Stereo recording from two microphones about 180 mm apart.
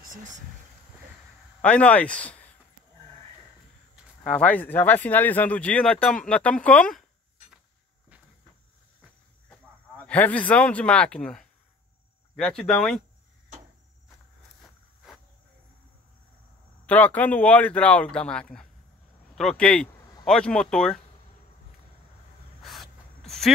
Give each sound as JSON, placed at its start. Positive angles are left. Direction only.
{"t": 0.0, "sound": "speech", "side_deg": -45}
{"t": 1.6, "sound": "speech", "side_deg": 5}
{"t": 3.9, "sound": "speech", "side_deg": 5}
{"t": 10.0, "sound": "speech", "side_deg": 10}
{"t": 16.8, "sound": "speech", "side_deg": 10}
{"t": 22.6, "sound": "gasp", "side_deg": 0}